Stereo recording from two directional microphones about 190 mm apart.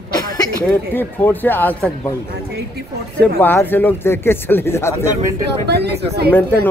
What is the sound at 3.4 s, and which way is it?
A man's voice, 10° left (ahead or behind).